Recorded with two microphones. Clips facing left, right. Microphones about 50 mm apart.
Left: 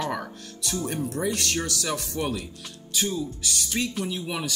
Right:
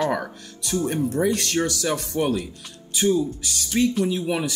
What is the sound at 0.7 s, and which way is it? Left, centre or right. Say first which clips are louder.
Speech: right 7 dB; right.